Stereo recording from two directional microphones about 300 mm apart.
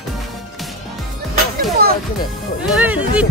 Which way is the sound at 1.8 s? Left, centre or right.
Right.